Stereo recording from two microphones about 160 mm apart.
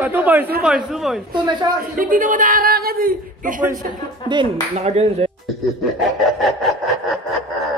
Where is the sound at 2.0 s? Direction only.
55° right (ahead or behind).